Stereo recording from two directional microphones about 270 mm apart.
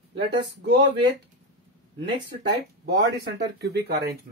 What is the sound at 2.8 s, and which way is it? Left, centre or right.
Speech, right.